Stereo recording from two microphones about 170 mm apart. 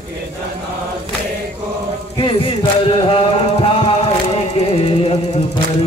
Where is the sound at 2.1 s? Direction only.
30° left (ahead or behind).